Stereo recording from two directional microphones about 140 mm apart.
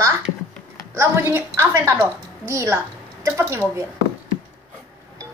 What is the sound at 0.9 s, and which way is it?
A woman's voice, 20° right (ahead or behind).